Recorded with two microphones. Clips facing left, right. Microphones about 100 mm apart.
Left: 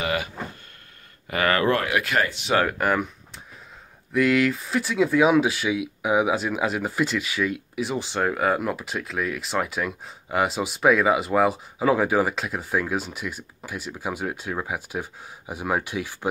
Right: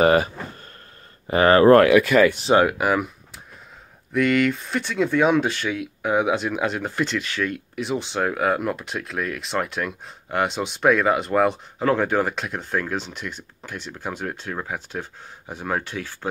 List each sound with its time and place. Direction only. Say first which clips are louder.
0.0 s a sound: right 10 dB; 35° right (ahead or behind)
1.2 s speech: right 8 dB; 30° right (ahead or behind)
2.6 s speech: right 3 dB; 5° right (ahead or behind)
4.1 s speech: right 1 dB; centre (ahead or behind)